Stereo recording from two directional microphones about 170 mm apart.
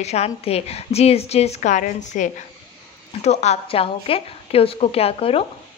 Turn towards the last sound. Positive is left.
turn(degrees=35)  # may be behind; listen again after turning